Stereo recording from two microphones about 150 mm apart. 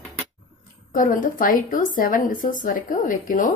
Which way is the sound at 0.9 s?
65° left (ahead or behind).